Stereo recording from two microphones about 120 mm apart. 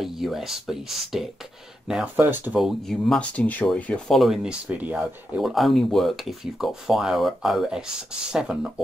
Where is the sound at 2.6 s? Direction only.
5° left (ahead or behind).